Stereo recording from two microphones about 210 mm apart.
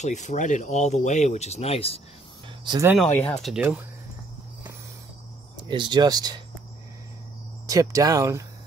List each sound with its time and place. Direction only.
0.0 s speech: 35° left (ahead or behind)
2.6 s speech: 20° right (ahead or behind)
3.0 s speech: 5° left (ahead or behind)
5.6 s speech: 20° right (ahead or behind)
7.6 s speech: 15° right (ahead or behind)